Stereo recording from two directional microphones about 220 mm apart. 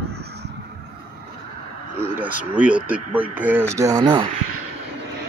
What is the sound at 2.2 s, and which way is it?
Speech, 5° right (ahead or behind).